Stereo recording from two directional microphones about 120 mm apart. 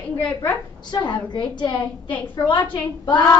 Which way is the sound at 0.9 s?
35° left (ahead or behind).